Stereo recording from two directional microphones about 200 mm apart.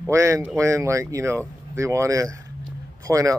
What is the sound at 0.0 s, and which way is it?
Speech, 15° right (ahead or behind).